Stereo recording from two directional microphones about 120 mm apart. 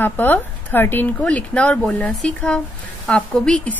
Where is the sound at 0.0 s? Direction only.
15° left (ahead or behind).